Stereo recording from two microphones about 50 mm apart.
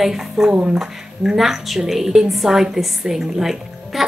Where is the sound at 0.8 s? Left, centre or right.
Centre.